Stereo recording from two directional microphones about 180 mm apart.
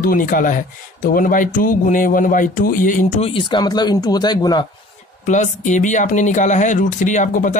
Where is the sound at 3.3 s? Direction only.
25° left (ahead or behind).